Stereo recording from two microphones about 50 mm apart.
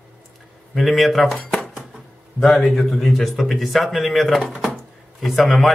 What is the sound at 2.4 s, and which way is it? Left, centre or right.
Speech, centre.